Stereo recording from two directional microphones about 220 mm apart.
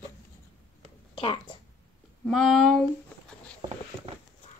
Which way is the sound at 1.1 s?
25° left (ahead or behind).